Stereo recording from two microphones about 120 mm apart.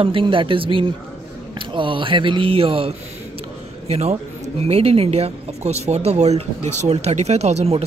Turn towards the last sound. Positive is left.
turn(degrees=-60)  # may be behind; listen again after turning